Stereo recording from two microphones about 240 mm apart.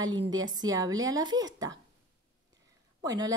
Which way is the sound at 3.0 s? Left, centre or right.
Centre.